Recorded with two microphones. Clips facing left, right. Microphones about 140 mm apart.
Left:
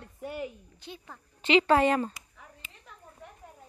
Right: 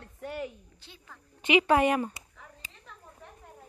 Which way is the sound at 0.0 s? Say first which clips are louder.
Even; 5° left (ahead or behind).